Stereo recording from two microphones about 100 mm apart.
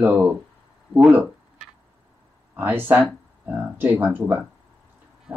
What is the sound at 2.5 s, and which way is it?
Speech, 20° right (ahead or behind).